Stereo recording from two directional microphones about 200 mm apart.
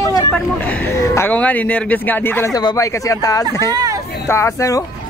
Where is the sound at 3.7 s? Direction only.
20° right (ahead or behind).